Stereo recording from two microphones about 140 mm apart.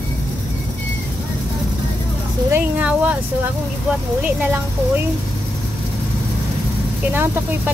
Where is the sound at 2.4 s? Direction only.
15° right (ahead or behind).